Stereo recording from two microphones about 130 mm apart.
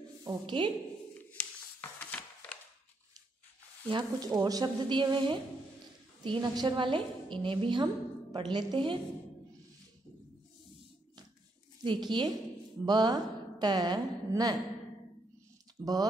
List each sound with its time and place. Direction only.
0.2 s a woman's voice: 35° right (ahead or behind)
1.1 s a sound: 15° left (ahead or behind)
3.9 s a woman's voice: 30° right (ahead or behind)
11.8 s a woman's voice: 35° right (ahead or behind)
15.8 s speech: 30° right (ahead or behind)